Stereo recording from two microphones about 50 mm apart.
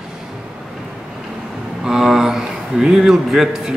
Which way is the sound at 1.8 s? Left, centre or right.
Centre.